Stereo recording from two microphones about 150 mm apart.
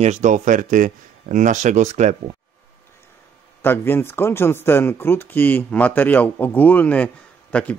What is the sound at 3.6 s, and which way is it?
Speech, 15° left (ahead or behind).